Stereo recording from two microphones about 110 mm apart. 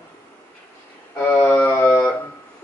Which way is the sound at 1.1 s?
20° left (ahead or behind).